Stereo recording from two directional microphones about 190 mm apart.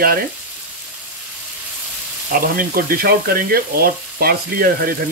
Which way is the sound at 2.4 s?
50° right (ahead or behind).